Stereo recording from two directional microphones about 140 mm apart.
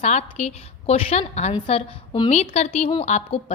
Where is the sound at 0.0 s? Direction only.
50° left (ahead or behind).